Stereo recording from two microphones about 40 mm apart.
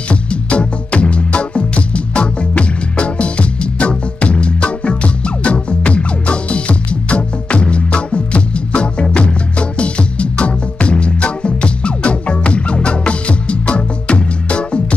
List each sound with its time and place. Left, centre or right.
0.1 s music: left